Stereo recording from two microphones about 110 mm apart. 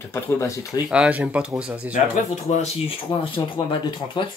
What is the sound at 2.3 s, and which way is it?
Speech, 85° left.